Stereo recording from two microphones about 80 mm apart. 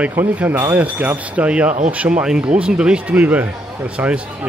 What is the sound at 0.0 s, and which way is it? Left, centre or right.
Speech, right.